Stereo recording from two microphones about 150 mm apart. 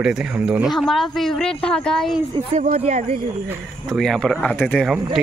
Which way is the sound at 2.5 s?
50° right (ahead or behind).